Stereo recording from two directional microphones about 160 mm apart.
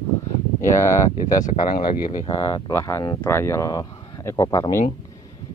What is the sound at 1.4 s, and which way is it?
Speech, 55° left (ahead or behind).